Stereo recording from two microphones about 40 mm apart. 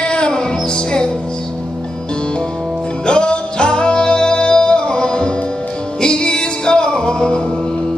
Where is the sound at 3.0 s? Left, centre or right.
Left.